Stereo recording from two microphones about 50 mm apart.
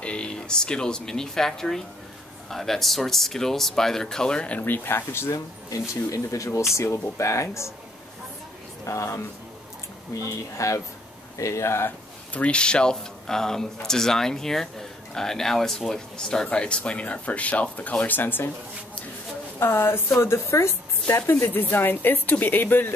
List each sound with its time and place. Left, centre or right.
0.0 s speech: left
4.5 s speech: left
6.0 s speech: left
8.8 s speech: left
10.2 s speech: left
12.3 s speech: left
19.6 s speech: left
20.5 s a woman's voice: left
21.3 s speech: left